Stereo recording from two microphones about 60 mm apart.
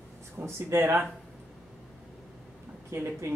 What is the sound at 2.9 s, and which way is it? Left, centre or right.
Speech, right.